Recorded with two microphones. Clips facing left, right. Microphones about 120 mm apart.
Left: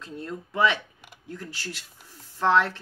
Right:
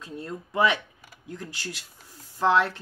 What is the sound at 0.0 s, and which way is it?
Speech, 15° right (ahead or behind).